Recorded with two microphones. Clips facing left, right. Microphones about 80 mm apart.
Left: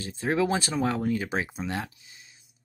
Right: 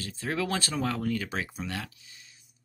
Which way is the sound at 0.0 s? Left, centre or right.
Left.